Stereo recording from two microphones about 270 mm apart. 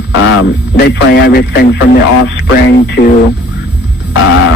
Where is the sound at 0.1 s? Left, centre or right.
Left.